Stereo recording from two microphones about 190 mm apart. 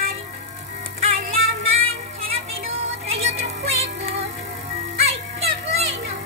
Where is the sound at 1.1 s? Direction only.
30° right (ahead or behind).